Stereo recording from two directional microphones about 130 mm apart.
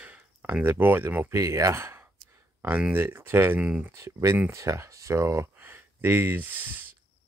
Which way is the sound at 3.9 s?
20° right (ahead or behind).